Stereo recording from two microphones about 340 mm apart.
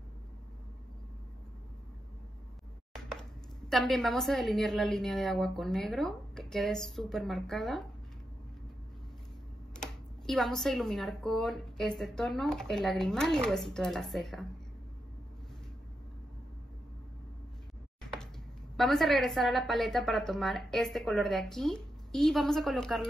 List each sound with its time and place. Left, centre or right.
2.9 s speech: centre
9.8 s speech: centre
18.8 s speech: centre